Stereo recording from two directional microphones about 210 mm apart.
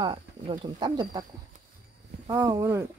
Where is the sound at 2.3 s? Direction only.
15° right (ahead or behind).